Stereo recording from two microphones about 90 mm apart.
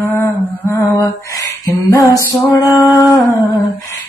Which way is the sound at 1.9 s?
35° left (ahead or behind).